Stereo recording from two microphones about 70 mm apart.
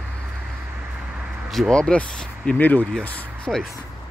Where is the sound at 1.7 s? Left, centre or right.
Centre.